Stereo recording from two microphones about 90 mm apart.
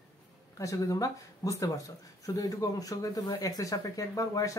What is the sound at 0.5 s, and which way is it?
Speech, 40° left (ahead or behind).